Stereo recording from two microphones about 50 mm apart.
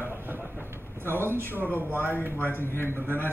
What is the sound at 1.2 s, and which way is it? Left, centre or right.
Speech, right.